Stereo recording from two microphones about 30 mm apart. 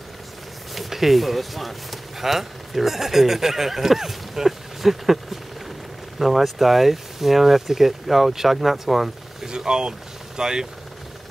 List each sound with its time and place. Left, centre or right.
0.7 s speech: centre
9.5 s speech: right